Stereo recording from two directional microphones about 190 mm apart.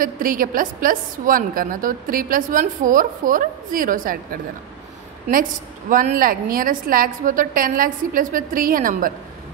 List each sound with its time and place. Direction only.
0.0 s a woman's voice: 50° right (ahead or behind)